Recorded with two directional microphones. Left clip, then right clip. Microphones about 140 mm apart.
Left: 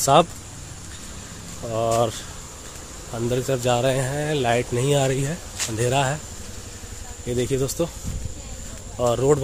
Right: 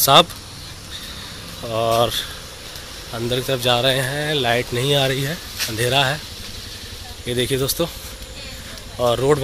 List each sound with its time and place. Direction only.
0.0 s speech: 15° left (ahead or behind)
1.7 s speech: 5° left (ahead or behind)
3.2 s speech: 20° left (ahead or behind)
7.2 s speech: 10° left (ahead or behind)
8.9 s speech: 5° left (ahead or behind)